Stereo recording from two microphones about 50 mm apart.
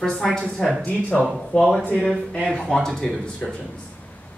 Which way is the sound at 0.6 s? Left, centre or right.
Centre.